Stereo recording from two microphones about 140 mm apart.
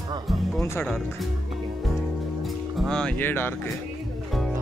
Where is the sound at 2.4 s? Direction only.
Centre (ahead or behind).